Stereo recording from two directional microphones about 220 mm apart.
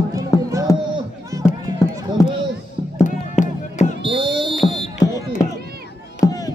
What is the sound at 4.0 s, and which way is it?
Fire alarm, 20° right (ahead or behind).